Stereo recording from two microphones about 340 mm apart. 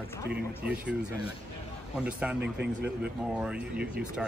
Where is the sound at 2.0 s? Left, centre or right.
Centre.